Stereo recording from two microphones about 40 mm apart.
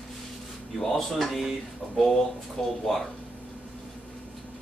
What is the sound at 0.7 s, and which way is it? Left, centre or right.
Speech, centre.